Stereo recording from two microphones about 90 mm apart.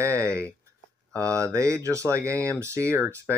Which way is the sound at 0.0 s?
30° right (ahead or behind).